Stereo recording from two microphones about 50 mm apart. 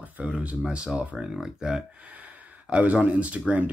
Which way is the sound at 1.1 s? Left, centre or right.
Centre.